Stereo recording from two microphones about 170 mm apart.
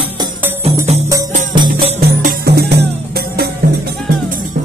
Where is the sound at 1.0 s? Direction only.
20° right (ahead or behind).